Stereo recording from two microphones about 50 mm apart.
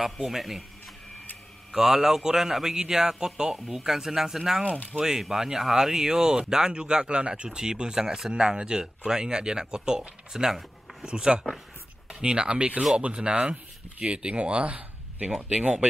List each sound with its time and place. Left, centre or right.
0.0 s speech: centre
1.7 s speech: centre; by 15.9 s right